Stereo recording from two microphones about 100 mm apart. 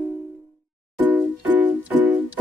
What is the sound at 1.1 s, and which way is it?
Music, 15° right (ahead or behind).